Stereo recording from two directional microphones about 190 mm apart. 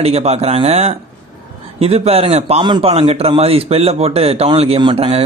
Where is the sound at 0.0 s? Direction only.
35° right (ahead or behind).